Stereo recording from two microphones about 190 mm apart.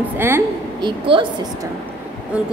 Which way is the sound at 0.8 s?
25° right (ahead or behind).